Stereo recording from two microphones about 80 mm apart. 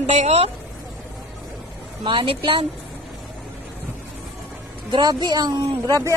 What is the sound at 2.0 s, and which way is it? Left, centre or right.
Speech, right.